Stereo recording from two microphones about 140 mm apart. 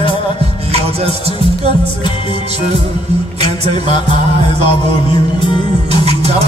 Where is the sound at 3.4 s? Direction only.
50° right (ahead or behind).